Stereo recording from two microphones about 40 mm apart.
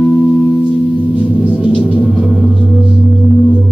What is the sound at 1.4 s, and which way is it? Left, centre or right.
Music, right.